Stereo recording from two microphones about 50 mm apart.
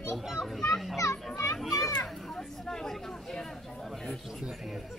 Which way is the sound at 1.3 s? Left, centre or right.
Left.